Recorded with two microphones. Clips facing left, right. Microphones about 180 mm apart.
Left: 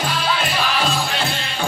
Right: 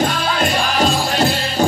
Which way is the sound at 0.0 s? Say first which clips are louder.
Right 4 dB; 45° right (ahead or behind).